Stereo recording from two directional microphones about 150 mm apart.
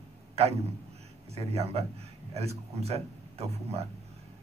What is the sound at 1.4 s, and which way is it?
Speech, 45° right (ahead or behind).